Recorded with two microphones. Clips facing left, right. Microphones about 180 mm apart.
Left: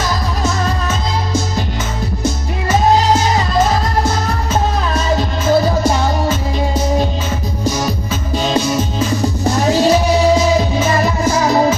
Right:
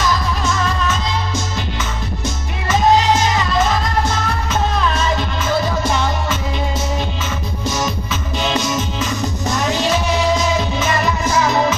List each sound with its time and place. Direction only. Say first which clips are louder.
0.4 s music: left 1 dB; 35° left (ahead or behind)
4.5 s music: left 1 dB; 40° left (ahead or behind)
7.7 s music: left 2 dB; 40° left (ahead or behind)